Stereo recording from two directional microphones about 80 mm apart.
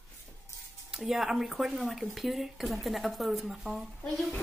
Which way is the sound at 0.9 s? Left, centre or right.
Centre.